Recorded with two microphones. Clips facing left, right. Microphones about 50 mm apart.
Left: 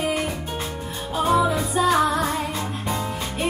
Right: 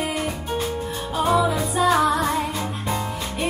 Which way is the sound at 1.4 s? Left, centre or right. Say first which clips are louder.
Even; centre.